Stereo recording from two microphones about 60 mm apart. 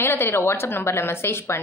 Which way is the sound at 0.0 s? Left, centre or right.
Left.